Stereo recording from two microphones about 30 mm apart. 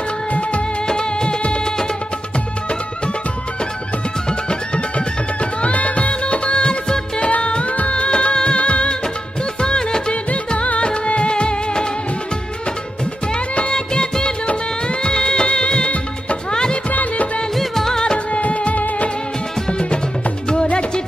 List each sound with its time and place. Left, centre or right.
0.3 s music of bollywood: left
0.8 s music: left
4.3 s music: left
4.9 s music: left
7.2 s music: left
8.5 s music of bollywood: left
9.6 s music of bollywood: left
10.3 s music: left
13.3 s music: left
16.9 s music: left
17.6 s music of bollywood: centre
18.4 s music of bollywood: left